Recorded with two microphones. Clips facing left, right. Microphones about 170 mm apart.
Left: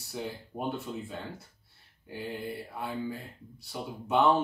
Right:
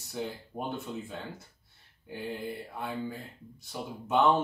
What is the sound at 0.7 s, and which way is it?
Speech, centre (ahead or behind).